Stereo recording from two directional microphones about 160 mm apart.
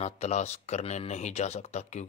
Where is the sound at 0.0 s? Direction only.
45° left (ahead or behind).